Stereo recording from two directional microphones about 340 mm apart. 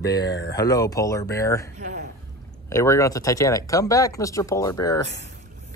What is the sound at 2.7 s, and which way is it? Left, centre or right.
Speech, centre.